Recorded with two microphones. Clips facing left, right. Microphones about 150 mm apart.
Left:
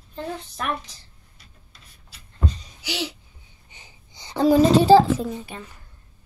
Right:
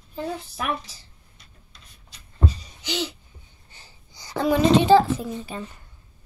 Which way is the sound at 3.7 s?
15° left (ahead or behind).